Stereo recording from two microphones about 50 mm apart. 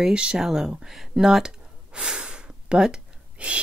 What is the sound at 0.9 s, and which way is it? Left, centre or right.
Gasp, centre.